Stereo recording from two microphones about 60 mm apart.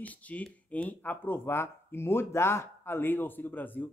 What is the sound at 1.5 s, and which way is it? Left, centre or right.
Speech, left.